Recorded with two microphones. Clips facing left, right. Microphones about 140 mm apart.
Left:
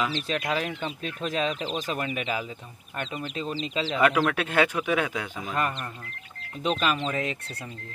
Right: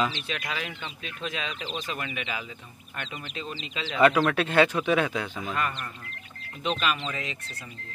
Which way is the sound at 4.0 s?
5° left (ahead or behind).